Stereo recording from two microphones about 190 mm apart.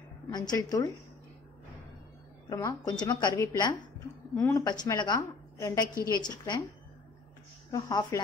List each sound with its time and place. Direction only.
0.3 s a woman's voice: 20° left (ahead or behind)
2.5 s a woman's voice: 20° left (ahead or behind)
7.7 s a woman's voice: 20° left (ahead or behind)